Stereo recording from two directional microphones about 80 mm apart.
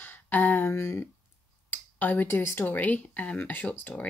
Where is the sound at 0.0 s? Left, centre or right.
Left.